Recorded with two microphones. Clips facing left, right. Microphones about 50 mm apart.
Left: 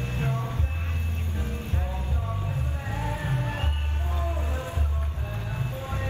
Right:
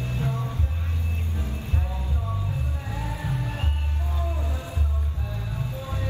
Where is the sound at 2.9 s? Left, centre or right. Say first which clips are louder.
Left 2 dB; left.